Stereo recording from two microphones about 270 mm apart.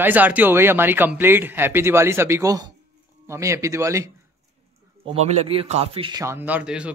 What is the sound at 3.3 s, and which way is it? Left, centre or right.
Speech, centre.